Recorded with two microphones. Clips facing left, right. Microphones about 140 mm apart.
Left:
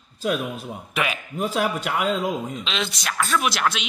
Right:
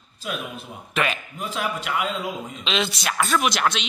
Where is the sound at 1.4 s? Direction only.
40° left (ahead or behind).